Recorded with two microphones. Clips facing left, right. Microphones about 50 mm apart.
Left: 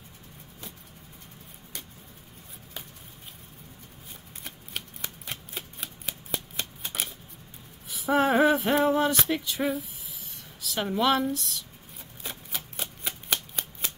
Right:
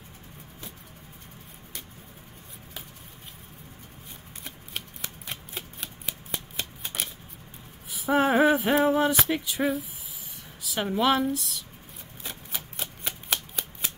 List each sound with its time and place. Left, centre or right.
4.5 s a sound: centre
6.6 s shuffling cards: centre
7.9 s male singing: centre
12.2 s shuffling cards: centre